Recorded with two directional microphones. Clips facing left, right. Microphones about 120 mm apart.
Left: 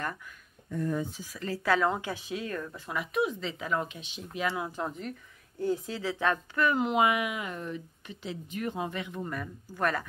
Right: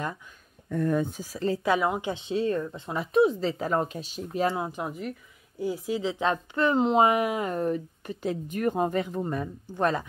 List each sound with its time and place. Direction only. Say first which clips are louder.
0.7 s speech: right 5 dB; 65° right (ahead or behind)
1.2 s speech: right 7 dB; 35° right (ahead or behind)
1.6 s a woman's voice: left 1 dB; 15° right (ahead or behind); by 4.6 s 35° right (ahead or behind)
4.6 s speech: right 2 dB; 15° right (ahead or behind); by 9.2 s 40° right (ahead or behind)
9.2 s a woman's voice: right 6 dB; 25° right (ahead or behind)